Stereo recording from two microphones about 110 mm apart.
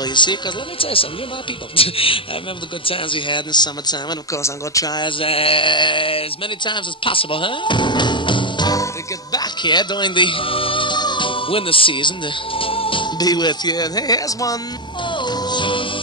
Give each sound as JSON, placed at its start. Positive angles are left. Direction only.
{"t": 0.0, "sound": "a man's voice", "side_deg": 45}
{"t": 5.2, "sound": "speech", "side_deg": 55}
{"t": 12.5, "sound": "music", "side_deg": 55}
{"t": 13.2, "sound": "speech", "side_deg": 40}
{"t": 15.0, "sound": "music", "side_deg": 45}